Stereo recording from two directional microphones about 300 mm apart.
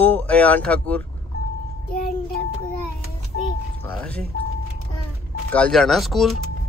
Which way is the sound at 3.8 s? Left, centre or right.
Centre.